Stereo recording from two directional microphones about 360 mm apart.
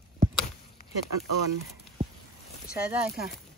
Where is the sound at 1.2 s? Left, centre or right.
Right.